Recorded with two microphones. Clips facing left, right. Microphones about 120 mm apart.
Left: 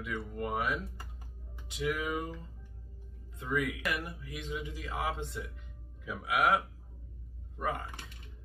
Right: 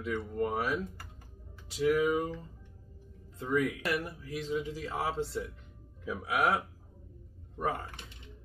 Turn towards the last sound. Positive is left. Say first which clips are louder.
# right 2 dB
turn(degrees=-35)  # may be behind; listen again after turning